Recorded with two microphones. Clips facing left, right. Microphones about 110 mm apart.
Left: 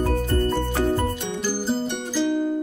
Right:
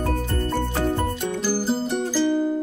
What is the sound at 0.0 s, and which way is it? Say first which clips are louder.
Music: left 3 dB; centre (ahead or behind).